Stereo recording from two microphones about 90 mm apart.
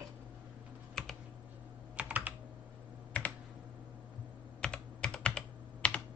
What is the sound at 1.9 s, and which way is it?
Computer keyboard, 15° right (ahead or behind).